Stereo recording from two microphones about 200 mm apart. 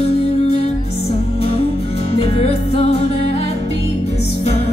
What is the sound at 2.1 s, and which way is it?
Music, 30° left (ahead or behind).